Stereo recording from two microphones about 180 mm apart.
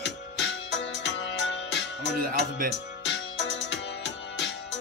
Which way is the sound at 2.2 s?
50° right (ahead or behind).